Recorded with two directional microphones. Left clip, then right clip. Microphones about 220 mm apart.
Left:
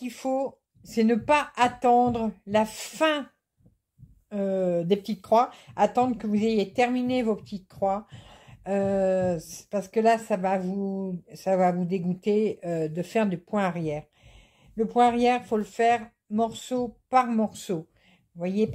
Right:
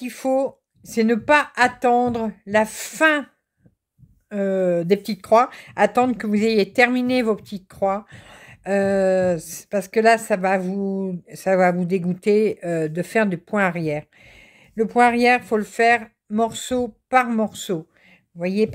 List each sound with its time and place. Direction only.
0.0 s speech: 30° right (ahead or behind)
4.3 s speech: 25° right (ahead or behind)